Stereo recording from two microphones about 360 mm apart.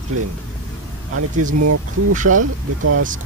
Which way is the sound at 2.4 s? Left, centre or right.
Right.